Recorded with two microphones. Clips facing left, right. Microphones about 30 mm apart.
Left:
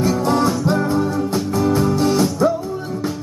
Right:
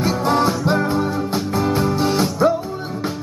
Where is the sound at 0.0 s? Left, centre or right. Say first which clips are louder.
Left 1 dB; right.